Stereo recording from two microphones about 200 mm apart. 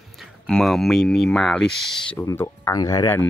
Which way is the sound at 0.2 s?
Centre (ahead or behind).